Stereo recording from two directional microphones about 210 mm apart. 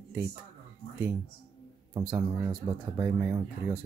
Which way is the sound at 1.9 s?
15° right (ahead or behind).